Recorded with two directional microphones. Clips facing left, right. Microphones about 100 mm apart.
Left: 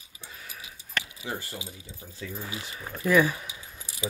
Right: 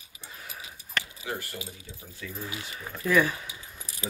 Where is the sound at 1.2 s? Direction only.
25° left (ahead or behind).